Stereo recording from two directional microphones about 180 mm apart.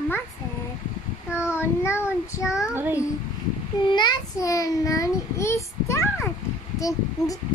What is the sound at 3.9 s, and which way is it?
A child's voice, 25° left (ahead or behind).